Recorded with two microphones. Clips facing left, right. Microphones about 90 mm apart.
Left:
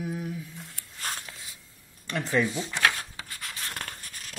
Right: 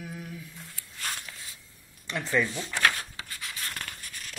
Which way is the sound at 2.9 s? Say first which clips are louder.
Even; 35° left (ahead or behind).